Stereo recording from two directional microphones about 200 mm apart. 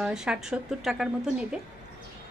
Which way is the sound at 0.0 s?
5° right (ahead or behind).